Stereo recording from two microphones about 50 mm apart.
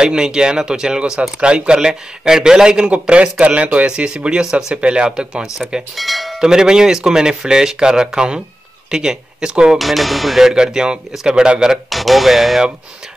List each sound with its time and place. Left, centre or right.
0.0 s speech: centre
5.9 s cowbell: centre
6.4 s speech: centre
9.8 s speech: centre
11.9 s speech: centre